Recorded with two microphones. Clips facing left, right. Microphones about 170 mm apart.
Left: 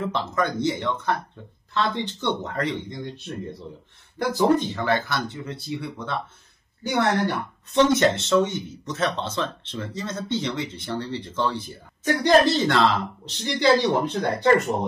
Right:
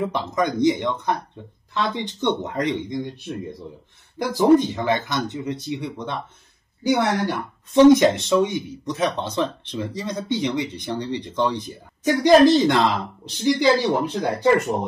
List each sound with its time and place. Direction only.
0.0 s speech: 15° right (ahead or behind)